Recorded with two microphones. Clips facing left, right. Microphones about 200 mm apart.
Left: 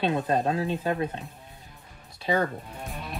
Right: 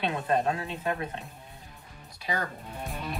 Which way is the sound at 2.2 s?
25° left (ahead or behind).